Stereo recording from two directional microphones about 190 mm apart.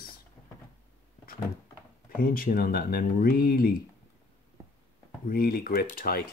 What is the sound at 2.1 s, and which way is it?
Speech, 50° left (ahead or behind).